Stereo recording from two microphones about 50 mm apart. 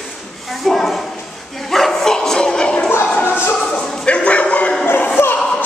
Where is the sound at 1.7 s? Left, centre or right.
Centre.